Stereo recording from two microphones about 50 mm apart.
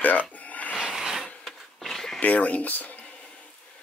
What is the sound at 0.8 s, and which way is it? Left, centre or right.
Filing, centre.